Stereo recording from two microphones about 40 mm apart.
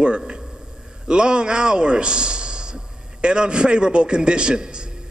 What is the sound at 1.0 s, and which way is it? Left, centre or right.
A man's voice, right.